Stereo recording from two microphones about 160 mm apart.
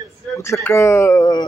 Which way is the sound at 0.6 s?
15° left (ahead or behind).